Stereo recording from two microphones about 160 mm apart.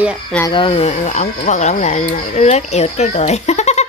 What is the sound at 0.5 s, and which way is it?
Speech, 35° left (ahead or behind).